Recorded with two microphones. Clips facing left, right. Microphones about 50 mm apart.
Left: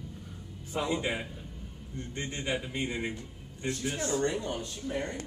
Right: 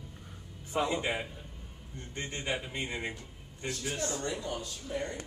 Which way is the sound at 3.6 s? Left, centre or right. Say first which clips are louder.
Left 2 dB; left.